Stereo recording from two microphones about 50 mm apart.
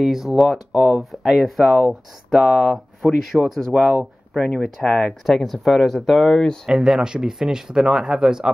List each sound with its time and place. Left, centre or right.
0.0 s speech: centre
0.8 s speech: centre
1.3 s speech: centre
6.6 s speech: centre